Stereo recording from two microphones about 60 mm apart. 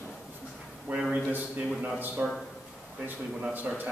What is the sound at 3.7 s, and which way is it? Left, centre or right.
Speech, right.